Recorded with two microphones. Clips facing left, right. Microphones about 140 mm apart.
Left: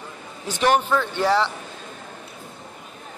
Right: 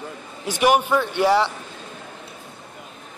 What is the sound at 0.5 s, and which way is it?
Speech, 10° right (ahead or behind).